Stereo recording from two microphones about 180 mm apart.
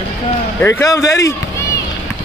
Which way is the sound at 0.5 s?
15° left (ahead or behind).